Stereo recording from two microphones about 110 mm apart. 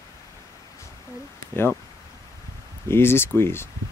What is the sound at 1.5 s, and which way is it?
Speech, 20° left (ahead or behind).